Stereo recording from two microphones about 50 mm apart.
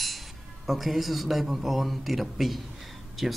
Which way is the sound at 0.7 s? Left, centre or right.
Centre.